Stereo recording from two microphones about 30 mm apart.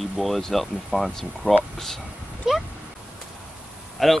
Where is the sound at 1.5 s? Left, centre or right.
Right.